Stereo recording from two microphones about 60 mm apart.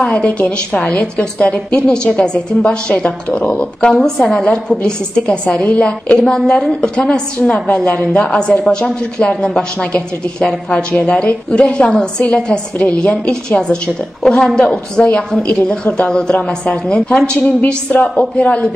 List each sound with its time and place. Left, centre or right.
0.0 s a woman's voice: left
4.0 s a woman's voice: centre